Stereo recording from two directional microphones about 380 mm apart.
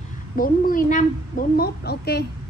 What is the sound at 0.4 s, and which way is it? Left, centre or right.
A woman's voice, left.